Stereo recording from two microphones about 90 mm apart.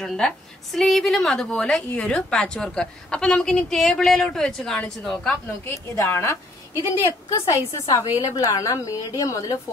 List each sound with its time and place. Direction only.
0.0 s a woman's voice: 5° left (ahead or behind)
5.7 s a woman's voice: 30° left (ahead or behind)